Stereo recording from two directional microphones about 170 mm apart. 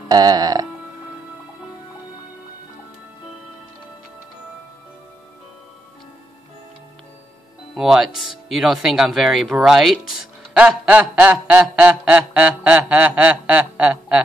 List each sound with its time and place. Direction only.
0.1 s music: 20° right (ahead or behind)
7.7 s speech: centre (ahead or behind)
10.5 s a sound: 5° right (ahead or behind)